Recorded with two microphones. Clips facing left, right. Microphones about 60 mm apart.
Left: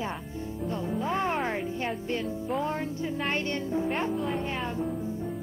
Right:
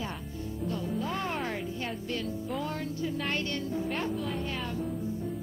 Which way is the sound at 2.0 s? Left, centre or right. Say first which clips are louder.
Left 3 dB; left.